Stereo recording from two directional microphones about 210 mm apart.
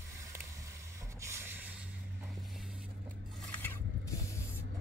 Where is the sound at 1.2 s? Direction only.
10° right (ahead or behind).